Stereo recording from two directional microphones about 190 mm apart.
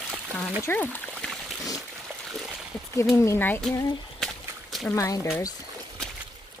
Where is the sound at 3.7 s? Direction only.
20° left (ahead or behind).